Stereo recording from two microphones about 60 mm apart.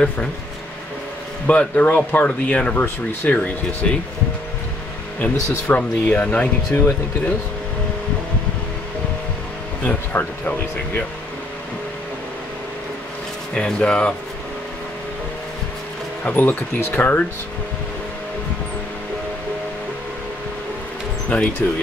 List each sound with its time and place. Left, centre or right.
1.5 s speech: left
5.2 s speech: left
9.8 s speech: left
13.6 s speech: centre
16.3 s speech: left
21.3 s speech: left